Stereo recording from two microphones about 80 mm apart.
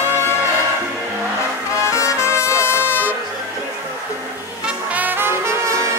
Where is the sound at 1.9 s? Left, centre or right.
Left.